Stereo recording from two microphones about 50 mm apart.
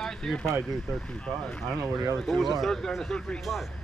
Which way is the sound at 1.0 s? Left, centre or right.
Left.